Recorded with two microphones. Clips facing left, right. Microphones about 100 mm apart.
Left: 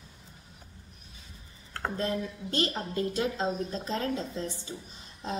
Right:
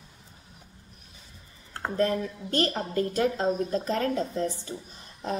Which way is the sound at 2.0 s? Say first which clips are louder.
Right 7 dB; 50° right (ahead or behind).